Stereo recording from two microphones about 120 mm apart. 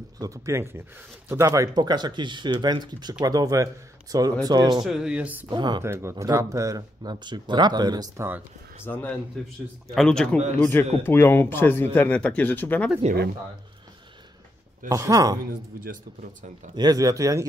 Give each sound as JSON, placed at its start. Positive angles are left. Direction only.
{"t": 0.2, "sound": "speech", "side_deg": -25}
{"t": 4.8, "sound": "speech", "side_deg": -5}
{"t": 5.5, "sound": "speech", "side_deg": -40}
{"t": 5.8, "sound": "speech", "side_deg": -25}
{"t": 8.8, "sound": "speech", "side_deg": 15}
{"t": 10.6, "sound": "speech", "side_deg": 20}
{"t": 14.9, "sound": "speech", "side_deg": -30}
{"t": 16.7, "sound": "speech", "side_deg": -30}